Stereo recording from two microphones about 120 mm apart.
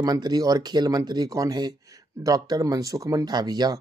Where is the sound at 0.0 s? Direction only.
35° right (ahead or behind).